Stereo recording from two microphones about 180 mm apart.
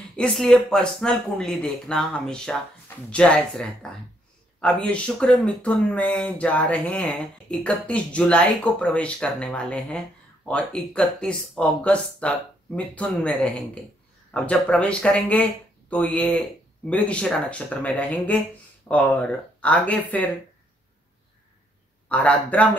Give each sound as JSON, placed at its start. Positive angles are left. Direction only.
{"t": 0.1, "sound": "speech", "side_deg": 5}
{"t": 22.1, "sound": "speech", "side_deg": 10}